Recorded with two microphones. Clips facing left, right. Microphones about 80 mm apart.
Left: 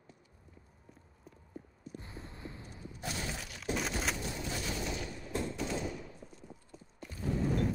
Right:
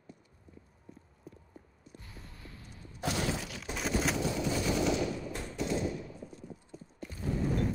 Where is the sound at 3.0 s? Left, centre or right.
Right.